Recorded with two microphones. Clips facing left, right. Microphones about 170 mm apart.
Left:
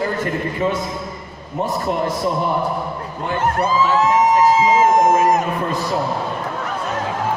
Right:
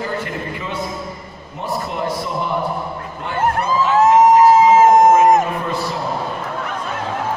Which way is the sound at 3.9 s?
50° right (ahead or behind).